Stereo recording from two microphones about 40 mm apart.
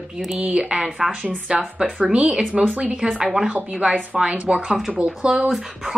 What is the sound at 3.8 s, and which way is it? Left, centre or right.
Speech, right.